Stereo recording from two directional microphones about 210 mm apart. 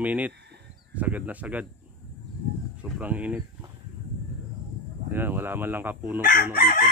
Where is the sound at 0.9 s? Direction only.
5° right (ahead or behind).